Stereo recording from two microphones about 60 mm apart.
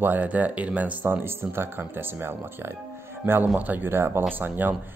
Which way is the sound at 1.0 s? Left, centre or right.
Right.